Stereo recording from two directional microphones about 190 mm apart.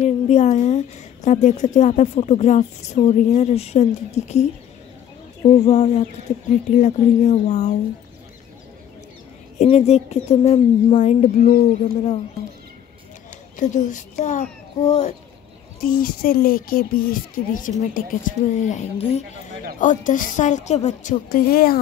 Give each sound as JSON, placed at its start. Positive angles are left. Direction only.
{"t": 0.0, "sound": "a woman's voice", "side_deg": 35}
{"t": 5.5, "sound": "a woman's voice", "side_deg": 35}
{"t": 9.6, "sound": "a woman's voice", "side_deg": 35}
{"t": 13.6, "sound": "a woman's voice", "side_deg": 40}
{"t": 15.8, "sound": "a woman's voice", "side_deg": 50}